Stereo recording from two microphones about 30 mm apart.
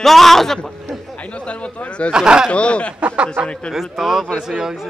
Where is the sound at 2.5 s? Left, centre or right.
Left.